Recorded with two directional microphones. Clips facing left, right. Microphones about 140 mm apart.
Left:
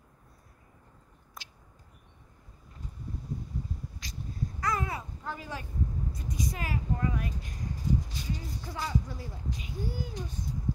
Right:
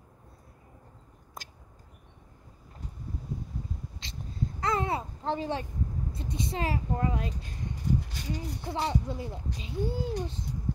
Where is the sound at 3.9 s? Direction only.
25° right (ahead or behind).